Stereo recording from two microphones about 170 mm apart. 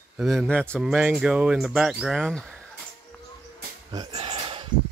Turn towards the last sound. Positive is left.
turn(degrees=-30)  # may be behind; listen again after turning